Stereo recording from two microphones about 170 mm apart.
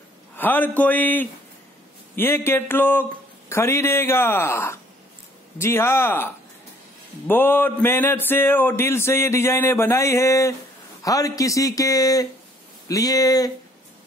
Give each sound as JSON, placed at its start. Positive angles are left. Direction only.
{"t": 0.4, "sound": "speech", "side_deg": 10}